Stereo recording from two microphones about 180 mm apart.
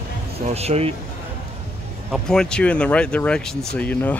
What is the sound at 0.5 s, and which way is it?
Speech, 35° right (ahead or behind).